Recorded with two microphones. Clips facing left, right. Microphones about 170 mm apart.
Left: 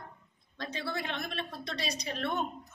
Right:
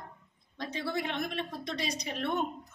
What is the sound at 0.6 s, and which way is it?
A woman's voice, 15° right (ahead or behind).